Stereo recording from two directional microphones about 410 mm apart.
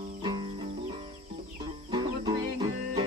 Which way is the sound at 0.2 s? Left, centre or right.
Centre.